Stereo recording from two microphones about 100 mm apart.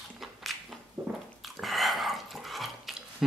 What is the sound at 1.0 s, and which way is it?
Biting, 45° right (ahead or behind).